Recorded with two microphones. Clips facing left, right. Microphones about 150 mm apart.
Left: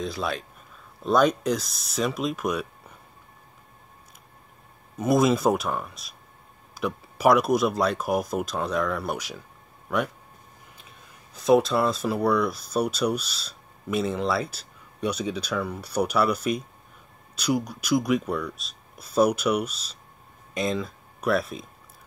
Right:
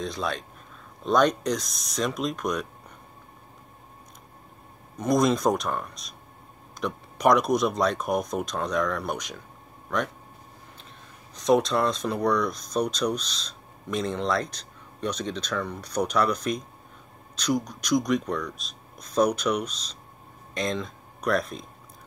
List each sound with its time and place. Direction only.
0.0 s speech: 5° left (ahead or behind)
4.9 s speech: 5° left (ahead or behind)
11.3 s speech: 5° left (ahead or behind)